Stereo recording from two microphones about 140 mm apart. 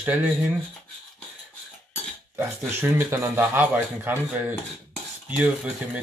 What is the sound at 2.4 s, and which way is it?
A man's voice, 15° right (ahead or behind).